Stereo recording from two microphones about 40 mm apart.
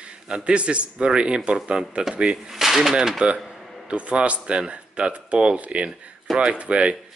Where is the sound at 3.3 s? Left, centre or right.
Centre.